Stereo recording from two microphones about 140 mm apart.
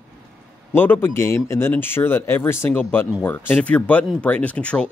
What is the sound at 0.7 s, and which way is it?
Speech, 15° left (ahead or behind).